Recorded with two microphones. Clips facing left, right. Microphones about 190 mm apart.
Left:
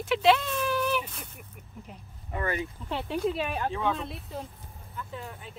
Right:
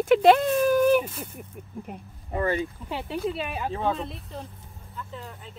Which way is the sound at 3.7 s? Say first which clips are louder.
Right 5 dB; 35° right (ahead or behind).